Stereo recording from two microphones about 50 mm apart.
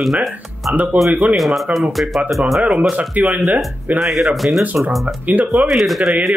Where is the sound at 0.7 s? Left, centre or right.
Right.